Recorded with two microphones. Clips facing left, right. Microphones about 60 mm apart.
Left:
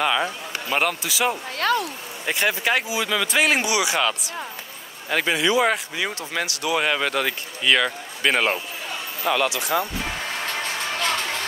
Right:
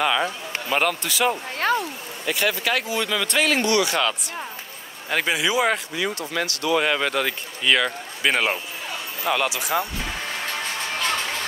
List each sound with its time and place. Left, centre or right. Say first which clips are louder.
0.0 s speech: even; centre
2.2 s speech: left 1 dB; left
2.9 s speech: left 1 dB; centre
3.4 s speech: right 1 dB; centre
5.1 s speech: left 1 dB; centre
5.9 s speech: right 1 dB; left
6.4 s speech: right 1 dB; centre